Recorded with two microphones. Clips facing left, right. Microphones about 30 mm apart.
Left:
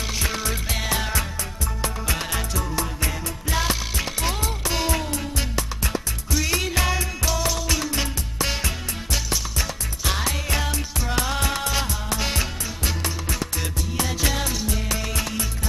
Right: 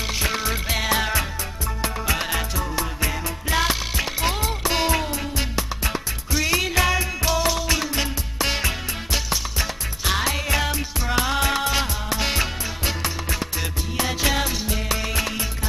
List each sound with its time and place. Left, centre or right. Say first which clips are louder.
0.0 s music: right 2 dB; centre